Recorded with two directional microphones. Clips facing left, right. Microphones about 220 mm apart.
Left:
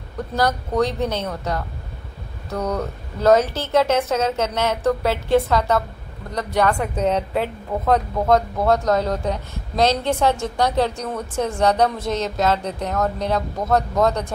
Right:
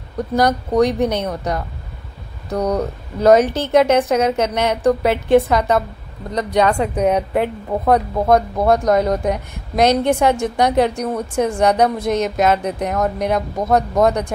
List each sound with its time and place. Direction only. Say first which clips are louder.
0.4 s speech: right 5 dB; 15° right (ahead or behind)